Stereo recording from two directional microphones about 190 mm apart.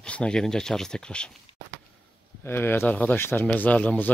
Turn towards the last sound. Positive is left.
turn(degrees=10)  # may be behind; listen again after turning